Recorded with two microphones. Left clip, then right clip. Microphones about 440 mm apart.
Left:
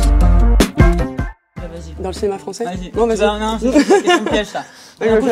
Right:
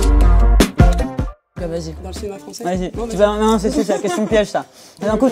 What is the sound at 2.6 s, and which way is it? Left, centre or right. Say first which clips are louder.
Speech: left 5 dB; right.